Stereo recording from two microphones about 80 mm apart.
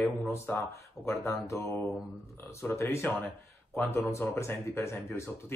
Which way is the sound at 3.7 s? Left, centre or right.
Left.